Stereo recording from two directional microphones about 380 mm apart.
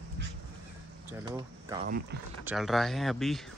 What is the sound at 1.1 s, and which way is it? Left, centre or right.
Speech, centre.